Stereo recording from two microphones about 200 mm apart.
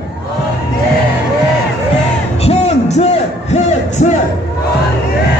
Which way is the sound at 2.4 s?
30° left (ahead or behind).